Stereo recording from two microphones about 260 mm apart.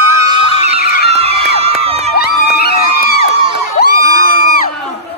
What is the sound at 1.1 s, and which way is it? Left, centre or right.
Crowd, right.